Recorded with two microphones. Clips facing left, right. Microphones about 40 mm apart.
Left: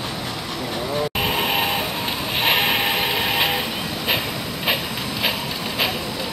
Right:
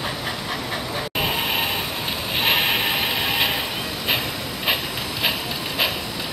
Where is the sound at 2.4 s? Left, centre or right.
Centre.